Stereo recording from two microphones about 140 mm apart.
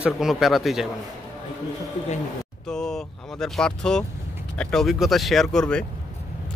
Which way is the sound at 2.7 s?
5° left (ahead or behind).